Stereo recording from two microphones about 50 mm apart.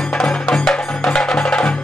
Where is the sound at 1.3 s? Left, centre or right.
Centre.